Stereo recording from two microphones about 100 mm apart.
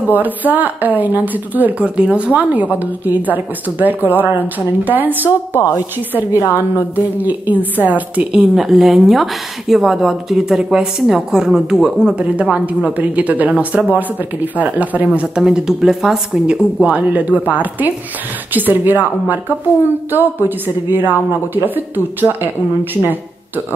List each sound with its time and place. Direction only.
0.1 s a woman's voice: 15° right (ahead or behind)
6.3 s a woman's voice: 30° left (ahead or behind)
7.2 s a woman's voice: 15° right (ahead or behind)